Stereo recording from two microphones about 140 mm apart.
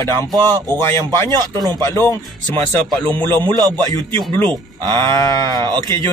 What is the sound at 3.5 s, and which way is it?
A man's voice, 25° right (ahead or behind).